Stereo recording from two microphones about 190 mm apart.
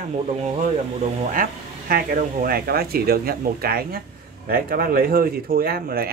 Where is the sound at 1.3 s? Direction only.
50° right (ahead or behind).